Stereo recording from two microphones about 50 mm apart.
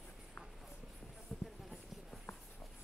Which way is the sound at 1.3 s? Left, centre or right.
Centre.